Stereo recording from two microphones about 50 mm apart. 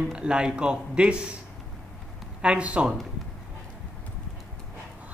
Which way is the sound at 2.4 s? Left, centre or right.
Right.